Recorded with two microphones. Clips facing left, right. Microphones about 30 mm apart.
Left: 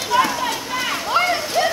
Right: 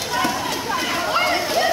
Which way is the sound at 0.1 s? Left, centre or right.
Centre.